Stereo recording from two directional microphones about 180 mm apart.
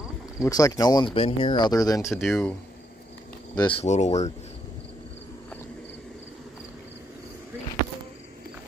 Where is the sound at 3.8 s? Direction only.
40° left (ahead or behind).